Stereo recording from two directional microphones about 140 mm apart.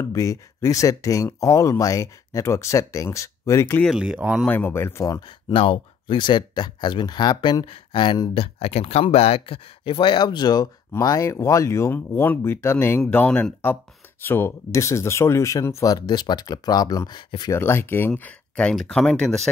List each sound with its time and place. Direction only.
0.0 s speech: 20° left (ahead or behind)
3.9 s speech: 5° right (ahead or behind)
4.5 s speech: 15° left (ahead or behind)
5.5 s speech: 40° left (ahead or behind)
8.5 s speech: 50° left (ahead or behind); by 19.5 s 5° left (ahead or behind)